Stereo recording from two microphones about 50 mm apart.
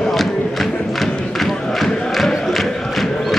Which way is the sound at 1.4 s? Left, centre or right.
Centre.